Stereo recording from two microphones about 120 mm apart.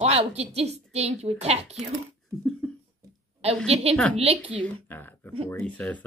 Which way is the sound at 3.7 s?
55° right (ahead or behind).